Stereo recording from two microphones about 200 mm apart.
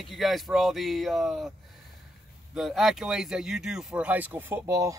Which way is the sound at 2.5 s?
Centre (ahead or behind).